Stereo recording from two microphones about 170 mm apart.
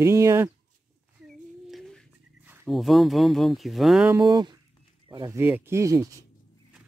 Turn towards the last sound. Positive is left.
turn(degrees=-20)  # may be behind; listen again after turning